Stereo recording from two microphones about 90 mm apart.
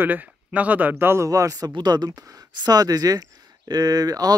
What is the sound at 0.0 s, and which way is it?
Speech, 20° right (ahead or behind).